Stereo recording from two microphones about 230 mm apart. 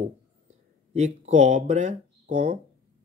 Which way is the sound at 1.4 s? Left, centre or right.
Right.